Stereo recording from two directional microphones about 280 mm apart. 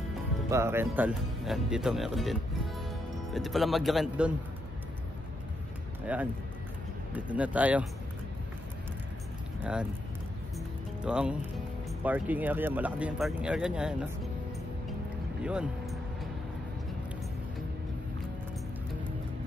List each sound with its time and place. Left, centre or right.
0.5 s speech: centre
3.3 s speech: centre
6.1 s speech: centre
11.1 s speech: centre
15.4 s speech: centre